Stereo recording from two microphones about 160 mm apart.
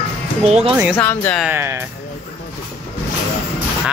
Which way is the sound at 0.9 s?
10° left (ahead or behind).